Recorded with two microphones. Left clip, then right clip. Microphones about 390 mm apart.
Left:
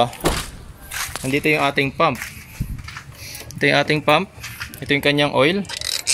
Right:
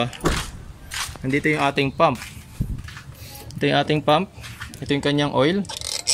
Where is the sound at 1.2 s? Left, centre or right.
Centre.